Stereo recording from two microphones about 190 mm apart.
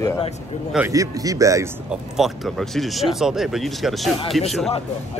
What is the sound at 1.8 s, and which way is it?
A man's voice, centre (ahead or behind).